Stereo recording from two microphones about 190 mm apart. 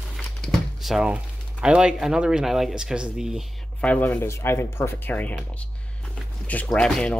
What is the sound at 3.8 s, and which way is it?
Speech, 10° left (ahead or behind).